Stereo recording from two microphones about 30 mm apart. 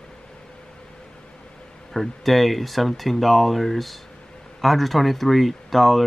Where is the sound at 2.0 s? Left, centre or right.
Centre.